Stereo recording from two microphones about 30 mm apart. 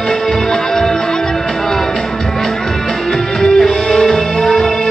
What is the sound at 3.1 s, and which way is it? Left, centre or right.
Music, centre.